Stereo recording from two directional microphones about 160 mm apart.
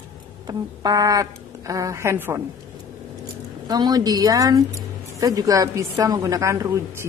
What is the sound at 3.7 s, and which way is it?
Speech, 25° right (ahead or behind).